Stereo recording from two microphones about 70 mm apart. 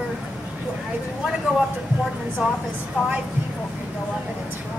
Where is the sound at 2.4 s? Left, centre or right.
Centre.